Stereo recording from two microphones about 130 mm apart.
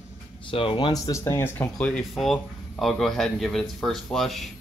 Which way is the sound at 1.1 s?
20° left (ahead or behind).